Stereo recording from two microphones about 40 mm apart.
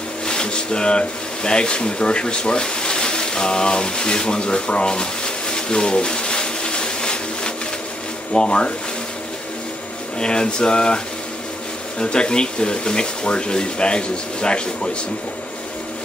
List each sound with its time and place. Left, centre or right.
0.3 s a sound: left
8.3 s speech: left
10.1 s speech: left
12.0 s speech: left